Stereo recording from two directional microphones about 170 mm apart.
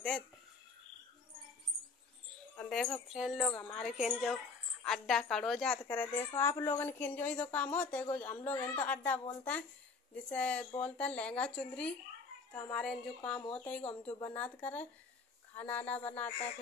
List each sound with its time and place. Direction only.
2.5 s a woman's voice: 5° left (ahead or behind)